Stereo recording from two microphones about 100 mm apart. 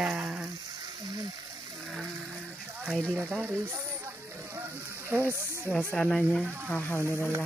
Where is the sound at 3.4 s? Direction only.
25° right (ahead or behind).